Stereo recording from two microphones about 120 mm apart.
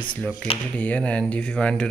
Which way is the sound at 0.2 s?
10° left (ahead or behind).